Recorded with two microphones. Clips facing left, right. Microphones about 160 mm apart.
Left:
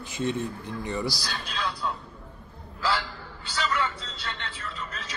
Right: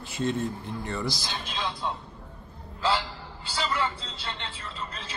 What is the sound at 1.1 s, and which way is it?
Speech, 20° right (ahead or behind).